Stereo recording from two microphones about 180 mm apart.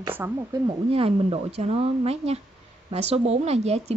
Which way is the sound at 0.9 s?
30° right (ahead or behind).